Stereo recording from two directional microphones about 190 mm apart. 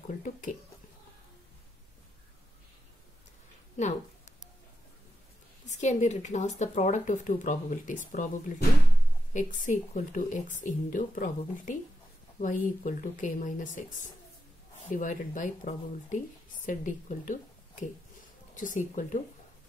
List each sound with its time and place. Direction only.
0.2 s a sound: 45° left (ahead or behind)
5.7 s speech: 40° left (ahead or behind)
9.3 s speech: 40° left (ahead or behind)
14.9 s speech: 45° left (ahead or behind)